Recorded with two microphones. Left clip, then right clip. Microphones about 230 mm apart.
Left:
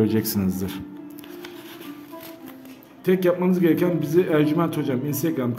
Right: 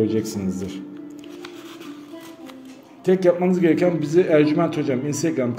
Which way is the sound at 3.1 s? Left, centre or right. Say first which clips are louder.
Right 3 dB; centre.